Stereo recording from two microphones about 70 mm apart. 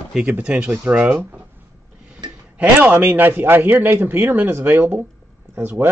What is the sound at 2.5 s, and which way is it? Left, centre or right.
A man's voice, right.